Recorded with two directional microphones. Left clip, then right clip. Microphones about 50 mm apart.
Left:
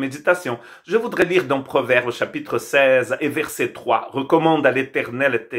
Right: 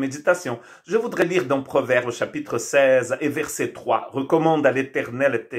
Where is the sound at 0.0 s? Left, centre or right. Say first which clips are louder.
Left 2 dB; left.